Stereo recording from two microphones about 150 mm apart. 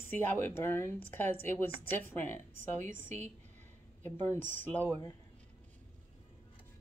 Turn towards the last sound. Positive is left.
turn(degrees=15)  # may be behind; listen again after turning